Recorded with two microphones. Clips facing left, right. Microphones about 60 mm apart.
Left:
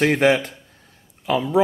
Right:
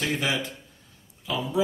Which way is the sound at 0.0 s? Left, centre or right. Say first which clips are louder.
Left 10 dB; left.